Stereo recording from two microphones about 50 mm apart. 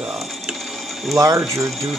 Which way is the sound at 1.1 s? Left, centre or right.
Right.